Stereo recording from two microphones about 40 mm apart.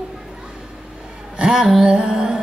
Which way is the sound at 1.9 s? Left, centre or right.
Right.